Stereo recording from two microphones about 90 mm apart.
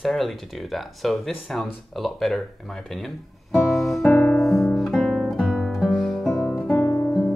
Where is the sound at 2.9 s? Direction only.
Centre (ahead or behind).